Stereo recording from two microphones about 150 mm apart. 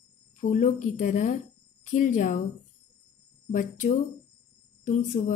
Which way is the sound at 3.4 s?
60° left (ahead or behind).